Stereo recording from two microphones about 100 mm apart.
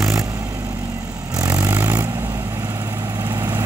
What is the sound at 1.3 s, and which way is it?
Vehicle, 35° right (ahead or behind).